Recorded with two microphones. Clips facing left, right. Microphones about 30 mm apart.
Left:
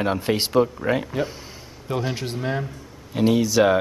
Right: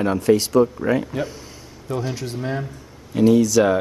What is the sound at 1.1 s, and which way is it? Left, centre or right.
Speech, centre.